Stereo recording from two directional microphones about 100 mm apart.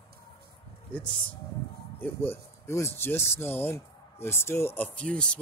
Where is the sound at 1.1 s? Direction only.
15° left (ahead or behind).